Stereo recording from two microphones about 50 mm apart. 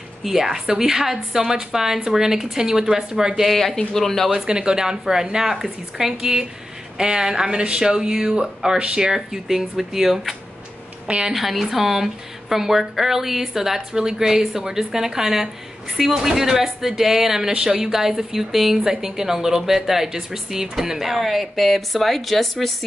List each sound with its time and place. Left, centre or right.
0.2 s speech: centre
3.4 s speech: centre
4.3 s speech: centre
11.1 s a woman's voice: right
11.3 s speech: centre